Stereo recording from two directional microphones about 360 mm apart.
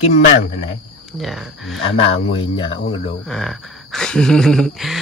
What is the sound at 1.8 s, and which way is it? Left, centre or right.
Speech, centre.